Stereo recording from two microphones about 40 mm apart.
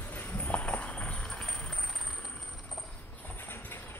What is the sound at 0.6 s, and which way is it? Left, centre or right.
Clip-clop, left.